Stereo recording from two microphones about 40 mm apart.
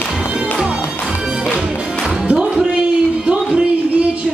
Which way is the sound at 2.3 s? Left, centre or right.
Right.